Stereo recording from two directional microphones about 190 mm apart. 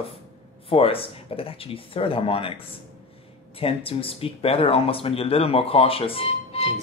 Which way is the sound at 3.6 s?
30° left (ahead or behind).